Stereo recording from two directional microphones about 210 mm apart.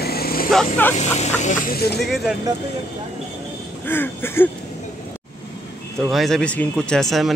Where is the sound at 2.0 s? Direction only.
Centre (ahead or behind).